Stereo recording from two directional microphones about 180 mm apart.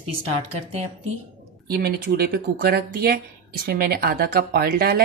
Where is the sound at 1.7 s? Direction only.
55° right (ahead or behind).